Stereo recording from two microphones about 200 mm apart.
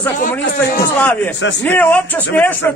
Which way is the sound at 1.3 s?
65° left (ahead or behind).